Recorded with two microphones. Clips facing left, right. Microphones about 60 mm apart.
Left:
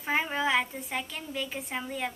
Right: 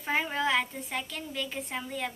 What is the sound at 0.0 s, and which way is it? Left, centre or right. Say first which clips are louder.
A woman's voice: left 1 dB; centre.